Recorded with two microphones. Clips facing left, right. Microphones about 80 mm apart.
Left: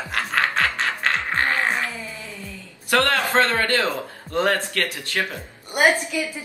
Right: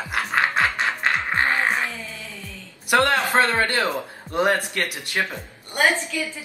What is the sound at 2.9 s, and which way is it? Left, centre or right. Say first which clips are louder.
A man's voice: right 1 dB; centre.